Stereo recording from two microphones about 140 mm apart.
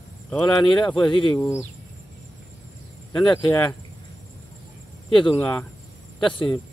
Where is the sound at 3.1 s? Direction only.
10° left (ahead or behind).